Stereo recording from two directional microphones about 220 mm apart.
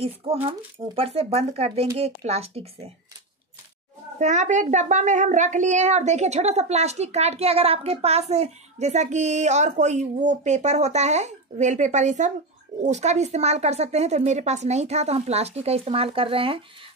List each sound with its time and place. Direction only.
0.0 s speech: 25° right (ahead or behind)
4.2 s speech: 30° right (ahead or behind)